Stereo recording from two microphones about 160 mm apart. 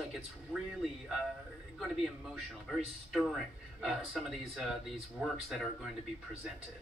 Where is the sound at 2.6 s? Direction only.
Centre (ahead or behind).